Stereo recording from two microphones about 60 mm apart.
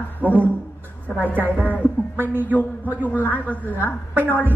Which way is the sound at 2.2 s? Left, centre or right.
Right.